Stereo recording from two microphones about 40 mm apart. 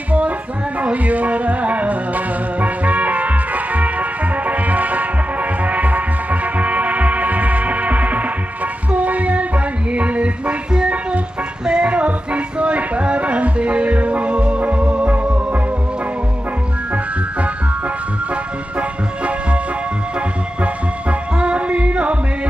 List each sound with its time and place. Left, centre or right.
0.7 s music: right
8.9 s child singing: right
9.9 s a sound: right
11.6 s music: right
11.9 s music: right
18.3 s music: right
20.6 s music: right